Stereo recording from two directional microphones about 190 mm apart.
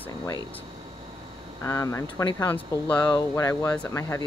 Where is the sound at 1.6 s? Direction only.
15° left (ahead or behind).